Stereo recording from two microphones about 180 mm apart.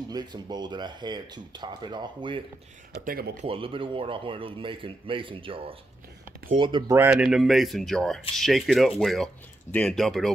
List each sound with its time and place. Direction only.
0.1 s speech: 25° right (ahead or behind)
2.9 s speech: 60° right (ahead or behind)
3.4 s speech: 30° right (ahead or behind)
7.0 s speech: 5° right (ahead or behind)